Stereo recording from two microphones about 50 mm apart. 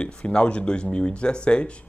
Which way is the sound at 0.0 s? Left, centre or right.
Left.